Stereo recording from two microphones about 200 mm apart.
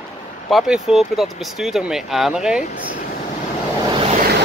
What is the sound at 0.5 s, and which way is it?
Speech, centre (ahead or behind).